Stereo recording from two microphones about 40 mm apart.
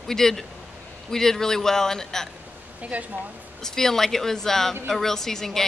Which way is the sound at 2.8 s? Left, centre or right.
Right.